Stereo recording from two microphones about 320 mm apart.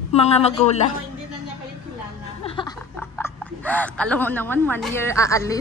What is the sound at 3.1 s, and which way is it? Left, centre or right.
A woman's voice, centre.